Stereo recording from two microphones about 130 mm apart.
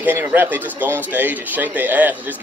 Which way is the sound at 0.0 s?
15° right (ahead or behind).